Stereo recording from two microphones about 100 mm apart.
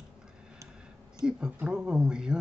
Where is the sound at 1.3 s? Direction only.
10° right (ahead or behind).